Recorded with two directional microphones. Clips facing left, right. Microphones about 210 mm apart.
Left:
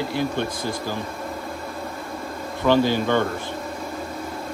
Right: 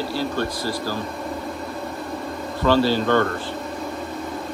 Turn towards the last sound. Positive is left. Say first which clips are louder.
# right 1 dB
turn(degrees=15)  # may be behind; listen again after turning